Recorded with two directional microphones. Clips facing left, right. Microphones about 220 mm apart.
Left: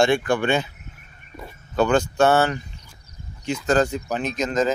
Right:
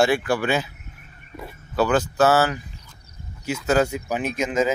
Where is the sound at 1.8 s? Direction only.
5° right (ahead or behind).